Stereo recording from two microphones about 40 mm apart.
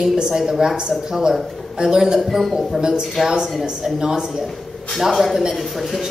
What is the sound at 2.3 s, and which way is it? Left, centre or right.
Speech, centre.